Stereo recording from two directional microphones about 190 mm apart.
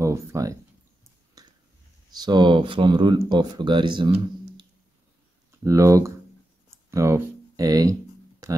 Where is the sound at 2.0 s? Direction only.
20° right (ahead or behind).